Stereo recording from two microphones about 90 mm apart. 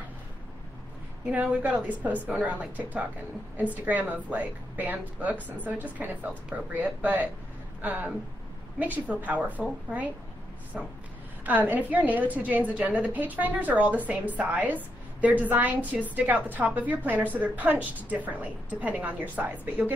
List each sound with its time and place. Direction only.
1.2 s a woman's voice: 15° right (ahead or behind)
11.4 s a woman's voice: 20° right (ahead or behind)